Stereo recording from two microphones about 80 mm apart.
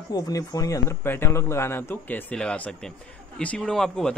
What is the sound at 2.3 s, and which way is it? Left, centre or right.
Speech, centre.